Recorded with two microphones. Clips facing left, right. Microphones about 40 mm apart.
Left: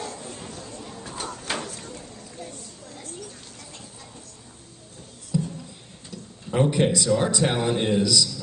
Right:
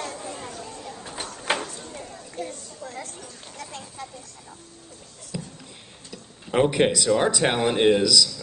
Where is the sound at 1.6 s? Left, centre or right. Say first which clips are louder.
Right 1 dB; right.